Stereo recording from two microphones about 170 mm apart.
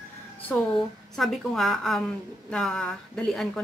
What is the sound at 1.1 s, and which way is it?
A woman's voice, centre (ahead or behind).